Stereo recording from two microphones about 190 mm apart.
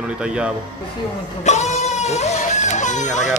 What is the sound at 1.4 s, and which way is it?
Guitar, 35° left (ahead or behind).